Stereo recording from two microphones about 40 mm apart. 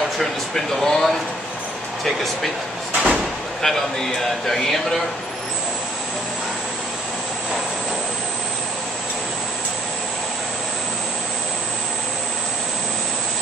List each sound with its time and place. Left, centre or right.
0.2 s speech: centre
2.9 s a sound: right
3.6 s speech: centre